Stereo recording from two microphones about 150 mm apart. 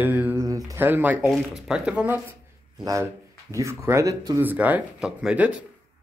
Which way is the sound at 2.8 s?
20° right (ahead or behind).